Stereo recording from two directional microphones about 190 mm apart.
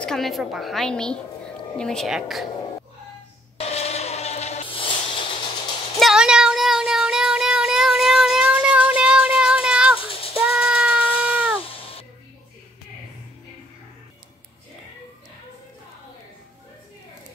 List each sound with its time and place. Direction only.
0.0 s a woman's voice: centre (ahead or behind)
3.5 s a sound: 35° left (ahead or behind)
5.9 s child singing: centre (ahead or behind)
10.3 s cat: 5° right (ahead or behind)
11.6 s cat: 30° left (ahead or behind)